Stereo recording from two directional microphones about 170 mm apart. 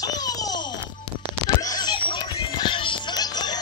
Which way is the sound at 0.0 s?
20° left (ahead or behind).